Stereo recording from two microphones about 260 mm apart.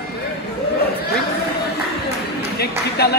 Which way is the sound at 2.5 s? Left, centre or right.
Left.